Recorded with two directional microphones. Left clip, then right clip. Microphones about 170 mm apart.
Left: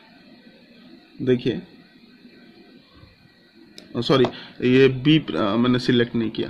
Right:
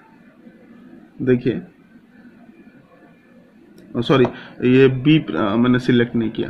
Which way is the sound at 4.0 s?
15° left (ahead or behind).